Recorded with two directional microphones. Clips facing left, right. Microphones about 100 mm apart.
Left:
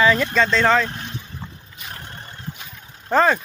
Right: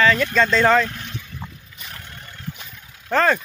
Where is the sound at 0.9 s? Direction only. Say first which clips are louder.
Left 2 dB; 30° left (ahead or behind).